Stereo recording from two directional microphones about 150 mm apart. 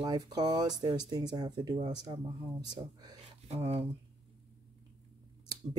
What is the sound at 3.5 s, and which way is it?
Speech, 40° right (ahead or behind).